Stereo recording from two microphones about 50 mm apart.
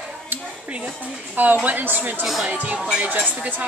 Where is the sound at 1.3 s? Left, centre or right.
Right.